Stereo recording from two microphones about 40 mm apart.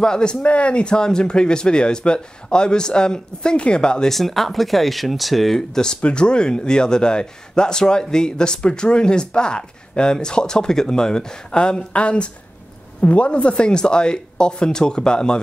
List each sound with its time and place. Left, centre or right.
0.0 s a man's voice: centre
4.1 s speech: centre
5.8 s a man's voice: centre